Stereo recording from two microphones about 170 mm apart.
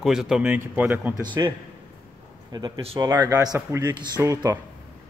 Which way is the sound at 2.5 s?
25° right (ahead or behind).